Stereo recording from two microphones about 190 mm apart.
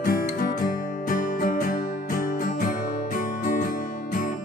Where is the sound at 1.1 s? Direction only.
45° left (ahead or behind).